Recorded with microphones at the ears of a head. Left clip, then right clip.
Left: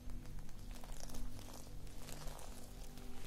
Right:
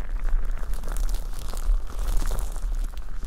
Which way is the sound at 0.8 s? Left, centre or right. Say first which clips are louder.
Right 11 dB; right.